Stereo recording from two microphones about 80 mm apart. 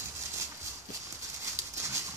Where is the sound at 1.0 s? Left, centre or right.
Right.